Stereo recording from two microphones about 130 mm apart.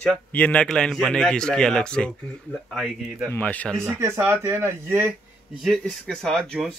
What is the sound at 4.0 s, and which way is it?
Speech, 20° right (ahead or behind).